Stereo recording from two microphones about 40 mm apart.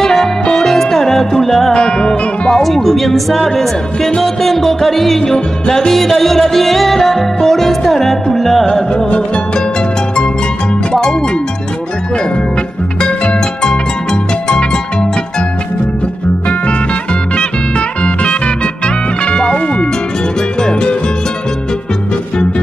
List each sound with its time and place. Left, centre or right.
0.0 s music: centre
1.7 s music: left
2.6 s music: centre
10.9 s music: centre
13.0 s harp: left
17.4 s music: left